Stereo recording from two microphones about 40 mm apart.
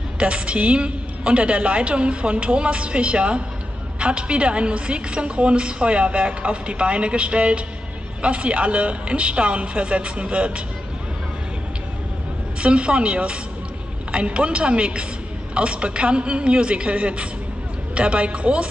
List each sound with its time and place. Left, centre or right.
0.2 s a woman's voice: right
12.5 s a woman's voice: right